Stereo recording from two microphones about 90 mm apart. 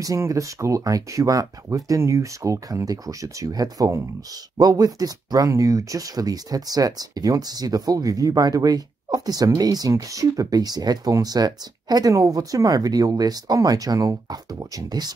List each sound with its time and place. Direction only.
0.0 s speech: 40° right (ahead or behind)